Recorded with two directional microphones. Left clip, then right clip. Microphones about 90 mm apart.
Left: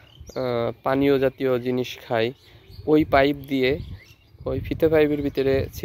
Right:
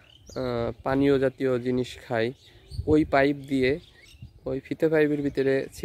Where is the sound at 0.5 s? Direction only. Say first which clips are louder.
Left 4 dB; 20° right (ahead or behind).